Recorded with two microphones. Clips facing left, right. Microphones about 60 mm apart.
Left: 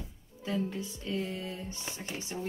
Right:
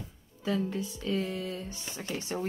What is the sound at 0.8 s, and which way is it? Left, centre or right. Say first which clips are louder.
Speech: right 3 dB; right.